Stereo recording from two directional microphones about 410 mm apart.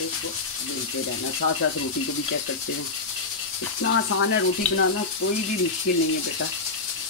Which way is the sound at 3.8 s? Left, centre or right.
Left.